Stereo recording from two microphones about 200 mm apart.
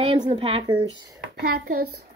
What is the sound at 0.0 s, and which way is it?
Speech, 30° right (ahead or behind).